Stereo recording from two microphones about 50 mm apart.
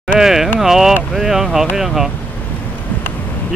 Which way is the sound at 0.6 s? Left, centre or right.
Centre.